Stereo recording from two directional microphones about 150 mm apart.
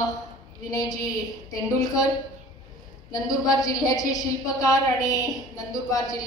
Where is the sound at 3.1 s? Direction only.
25° left (ahead or behind).